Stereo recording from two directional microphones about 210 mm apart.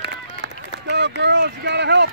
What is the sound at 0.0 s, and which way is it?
Run, 55° right (ahead or behind).